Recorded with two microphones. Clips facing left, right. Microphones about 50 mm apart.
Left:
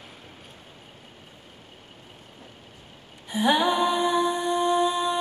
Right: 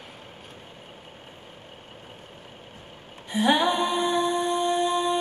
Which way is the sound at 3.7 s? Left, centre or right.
Centre.